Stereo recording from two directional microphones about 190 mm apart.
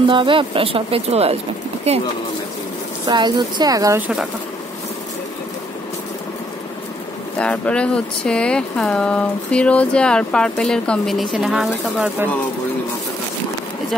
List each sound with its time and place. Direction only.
0.1 s speech: 25° right (ahead or behind)
3.1 s speech: 20° right (ahead or behind)
7.3 s speech: 5° left (ahead or behind)